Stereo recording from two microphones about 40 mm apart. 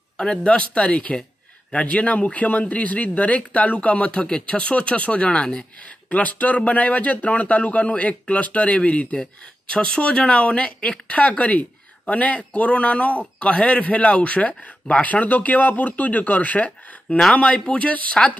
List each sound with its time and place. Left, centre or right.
0.2 s speech: left
5.9 s speech: left